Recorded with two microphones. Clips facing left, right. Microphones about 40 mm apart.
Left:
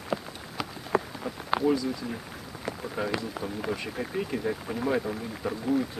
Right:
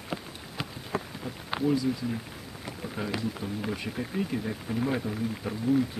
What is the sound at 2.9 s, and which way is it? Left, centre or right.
Speech, left.